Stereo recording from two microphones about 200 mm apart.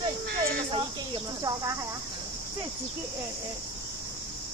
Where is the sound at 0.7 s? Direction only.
20° right (ahead or behind).